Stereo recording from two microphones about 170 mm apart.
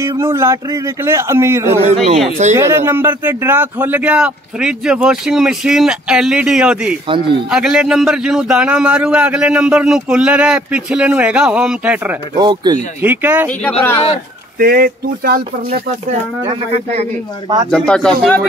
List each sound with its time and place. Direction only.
0.0 s a man's voice: 15° right (ahead or behind)
12.4 s speech: 25° right (ahead or behind)
13.0 s a man's voice: 10° right (ahead or behind)
13.6 s speech: 10° left (ahead or behind)
14.6 s speech: 60° right (ahead or behind)
16.4 s speech: 40° right (ahead or behind)
17.6 s a man's voice: 5° left (ahead or behind)